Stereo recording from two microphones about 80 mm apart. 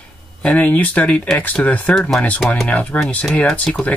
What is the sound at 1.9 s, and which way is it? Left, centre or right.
Speech, centre.